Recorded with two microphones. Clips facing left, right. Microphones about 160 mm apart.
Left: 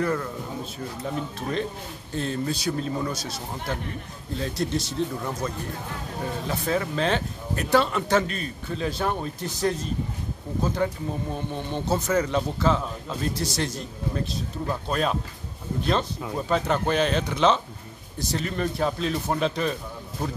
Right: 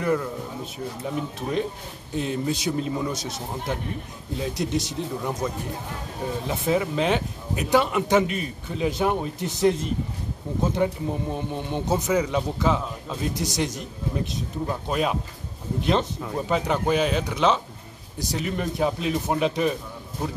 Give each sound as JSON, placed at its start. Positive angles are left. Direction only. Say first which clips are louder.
{"t": 0.0, "sound": "speech", "louder": "right 2 dB", "side_deg": -10}
{"t": 2.1, "sound": "speech", "louder": "right 2 dB", "side_deg": -15}
{"t": 4.4, "sound": "speech", "louder": "right 1 dB", "side_deg": -15}